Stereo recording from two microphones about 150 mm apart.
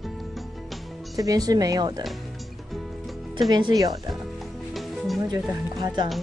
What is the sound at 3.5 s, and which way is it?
Speech, 25° right (ahead or behind).